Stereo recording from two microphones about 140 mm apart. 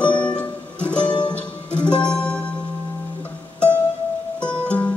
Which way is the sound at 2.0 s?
10° left (ahead or behind).